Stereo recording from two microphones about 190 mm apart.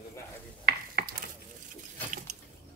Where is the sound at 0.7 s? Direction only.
60° right (ahead or behind).